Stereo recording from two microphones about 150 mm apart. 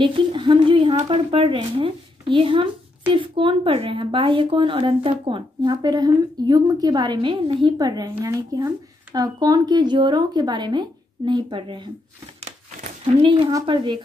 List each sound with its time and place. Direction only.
0.0 s a sound: 35° right (ahead or behind)
1.3 s speech: 35° right (ahead or behind)
13.0 s speech: 35° right (ahead or behind)